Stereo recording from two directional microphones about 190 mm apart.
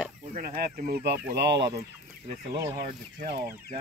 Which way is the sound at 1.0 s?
60° right (ahead or behind).